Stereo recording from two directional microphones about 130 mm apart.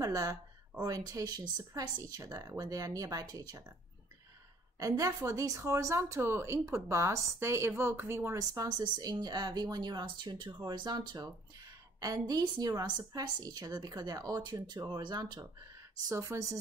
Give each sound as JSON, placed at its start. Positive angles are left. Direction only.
{"t": 0.0, "sound": "speech", "side_deg": -30}
{"t": 4.7, "sound": "speech", "side_deg": -25}